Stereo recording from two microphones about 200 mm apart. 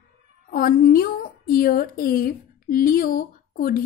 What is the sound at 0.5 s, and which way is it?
A woman's voice, 45° left (ahead or behind).